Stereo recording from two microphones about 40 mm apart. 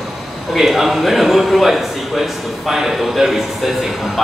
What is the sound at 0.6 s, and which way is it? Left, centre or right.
A man's voice, centre.